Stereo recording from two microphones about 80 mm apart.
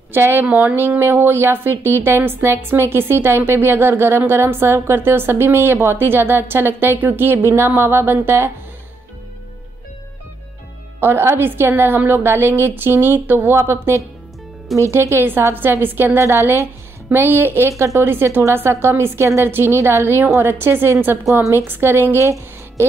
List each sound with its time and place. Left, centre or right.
0.1 s speech: right
11.0 s speech: right
21.3 s a woman's voice: right